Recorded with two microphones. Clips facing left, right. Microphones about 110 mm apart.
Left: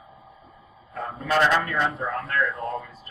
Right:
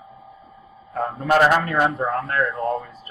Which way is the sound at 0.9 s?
50° right (ahead or behind).